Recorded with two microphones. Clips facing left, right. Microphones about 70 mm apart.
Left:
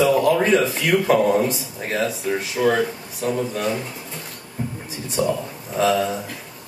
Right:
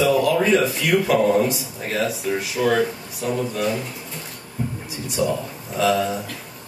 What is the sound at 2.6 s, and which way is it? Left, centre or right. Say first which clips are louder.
Speech: even; left.